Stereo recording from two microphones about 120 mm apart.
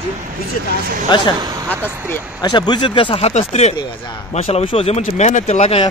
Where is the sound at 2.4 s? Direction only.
40° left (ahead or behind); by 5.7 s 70° left (ahead or behind).